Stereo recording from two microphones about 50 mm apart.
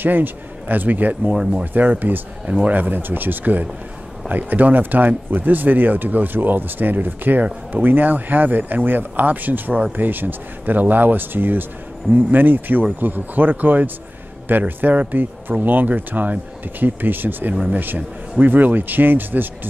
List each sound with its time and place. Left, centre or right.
0.0 s speech: right
1.3 s speech: centre
1.6 s speech: right